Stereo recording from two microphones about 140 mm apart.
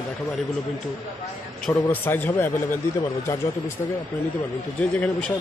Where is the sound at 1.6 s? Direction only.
15° left (ahead or behind).